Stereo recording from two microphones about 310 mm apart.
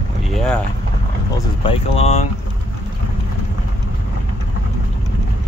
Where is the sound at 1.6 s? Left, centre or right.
Centre.